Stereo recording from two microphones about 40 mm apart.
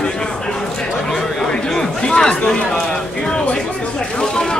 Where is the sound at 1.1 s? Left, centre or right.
Centre.